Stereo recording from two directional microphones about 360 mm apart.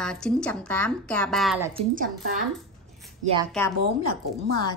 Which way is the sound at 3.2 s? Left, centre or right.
Centre.